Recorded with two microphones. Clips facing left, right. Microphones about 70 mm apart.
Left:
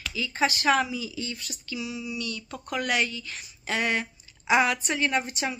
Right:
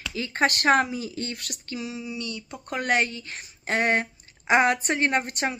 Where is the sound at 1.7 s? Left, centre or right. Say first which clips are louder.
Even; right.